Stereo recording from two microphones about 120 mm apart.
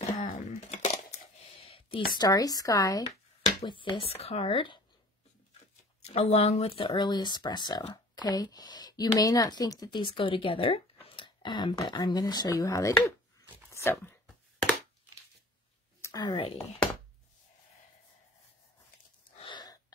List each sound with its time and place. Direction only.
0.0 s a sound: 90° left; by 1.5 s 70° left (ahead or behind)
1.6 s a sound: 50° left (ahead or behind)
2.2 s speech: 30° left (ahead or behind)
3.6 s speech: 40° left (ahead or behind)
6.1 s speech: 60° left (ahead or behind)
6.9 s speech: 35° left (ahead or behind)
13.7 s a sound: 20° left (ahead or behind)
16.0 s speech: 35° left (ahead or behind)
19.4 s wheeze: 35° left (ahead or behind)